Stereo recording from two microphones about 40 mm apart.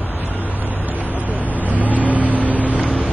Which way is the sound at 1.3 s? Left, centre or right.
Right.